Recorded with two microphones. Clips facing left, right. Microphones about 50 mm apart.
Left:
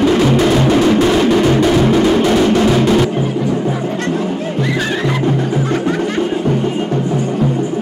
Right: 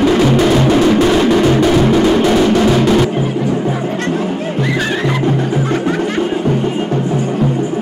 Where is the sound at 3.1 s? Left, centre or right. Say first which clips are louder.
Right 1 dB; right.